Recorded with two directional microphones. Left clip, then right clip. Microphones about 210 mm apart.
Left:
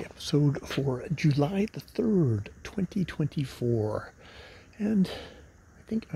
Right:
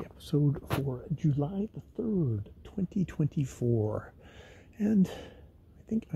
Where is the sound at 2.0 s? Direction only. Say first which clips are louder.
Left 6 dB; 30° left (ahead or behind).